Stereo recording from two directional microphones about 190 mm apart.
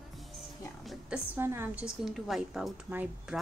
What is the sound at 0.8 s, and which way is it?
Speech, 10° right (ahead or behind).